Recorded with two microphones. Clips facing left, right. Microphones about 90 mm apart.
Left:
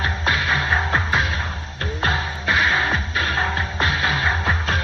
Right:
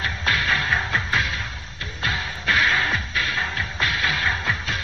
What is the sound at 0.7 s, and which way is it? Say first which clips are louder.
Music: left 3 dB; 30° left (ahead or behind).